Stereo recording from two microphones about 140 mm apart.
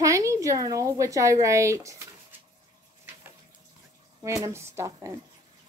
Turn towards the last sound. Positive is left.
turn(degrees=-20)  # may be behind; listen again after turning